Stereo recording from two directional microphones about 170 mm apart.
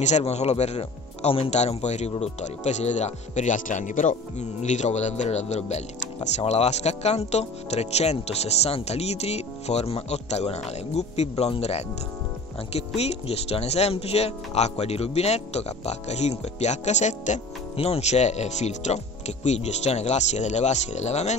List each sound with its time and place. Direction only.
0.0 s speech: 40° left (ahead or behind)